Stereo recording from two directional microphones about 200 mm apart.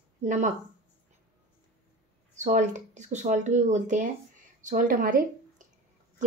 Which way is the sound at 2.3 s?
35° right (ahead or behind).